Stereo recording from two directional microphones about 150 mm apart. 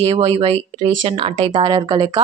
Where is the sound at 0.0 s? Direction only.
40° right (ahead or behind).